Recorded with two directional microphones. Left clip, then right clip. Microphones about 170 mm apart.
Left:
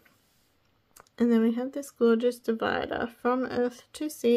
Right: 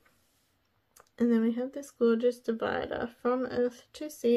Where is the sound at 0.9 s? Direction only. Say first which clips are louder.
Left 3 dB; 35° left (ahead or behind).